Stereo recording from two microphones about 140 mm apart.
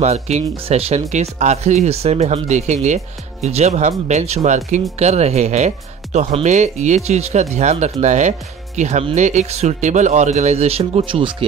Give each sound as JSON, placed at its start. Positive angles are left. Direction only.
{"t": 0.0, "sound": "speech", "side_deg": -50}